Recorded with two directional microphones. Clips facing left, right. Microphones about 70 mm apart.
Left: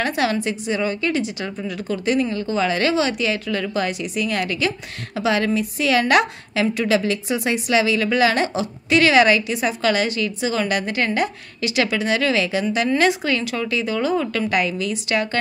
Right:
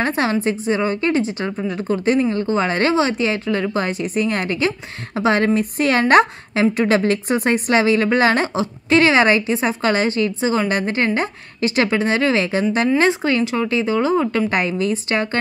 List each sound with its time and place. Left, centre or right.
0.0 s a woman's voice: right